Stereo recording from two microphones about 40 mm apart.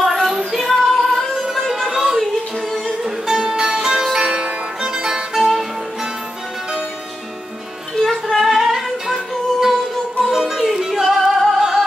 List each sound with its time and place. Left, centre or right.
0.0 s music: centre
0.5 s female singing: centre
1.3 s music: centre
1.7 s a sound: centre
3.0 s music: centre
4.3 s music: right; by 5.7 s centre
7.9 s music: centre